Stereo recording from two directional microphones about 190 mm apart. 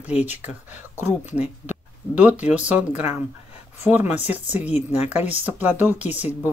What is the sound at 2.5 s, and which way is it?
Speech, 5° right (ahead or behind).